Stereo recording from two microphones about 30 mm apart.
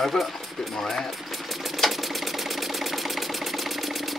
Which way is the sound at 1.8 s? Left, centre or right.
Centre.